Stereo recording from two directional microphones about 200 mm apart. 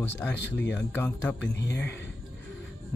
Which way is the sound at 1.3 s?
60° left (ahead or behind).